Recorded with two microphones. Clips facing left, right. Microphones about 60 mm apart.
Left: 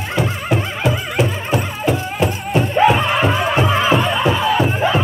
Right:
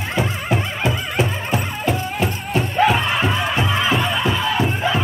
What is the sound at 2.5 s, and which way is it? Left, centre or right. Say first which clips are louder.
Music: left 3 dB; left.